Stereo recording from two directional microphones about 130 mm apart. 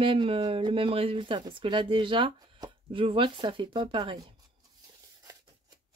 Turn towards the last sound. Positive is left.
turn(degrees=-35)  # may be behind; listen again after turning